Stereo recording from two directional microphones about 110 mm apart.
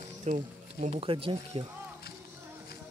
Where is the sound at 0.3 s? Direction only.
90° right.